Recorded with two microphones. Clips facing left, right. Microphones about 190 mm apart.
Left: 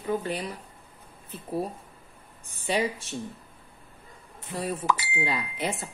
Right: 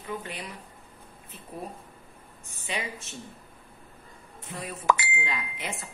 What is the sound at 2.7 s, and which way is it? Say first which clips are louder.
Speech: left 8 dB; 40° left (ahead or behind).